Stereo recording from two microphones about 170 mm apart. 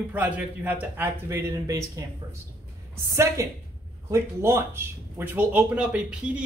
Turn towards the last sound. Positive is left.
turn(degrees=-5)  # may be behind; listen again after turning